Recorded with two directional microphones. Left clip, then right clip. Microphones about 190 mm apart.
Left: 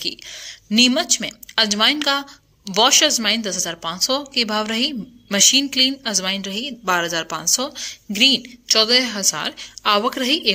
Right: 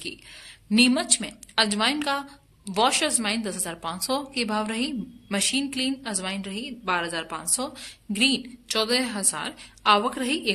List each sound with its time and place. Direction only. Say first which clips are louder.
0.0 s speech: left 10 dB; 25° left (ahead or behind)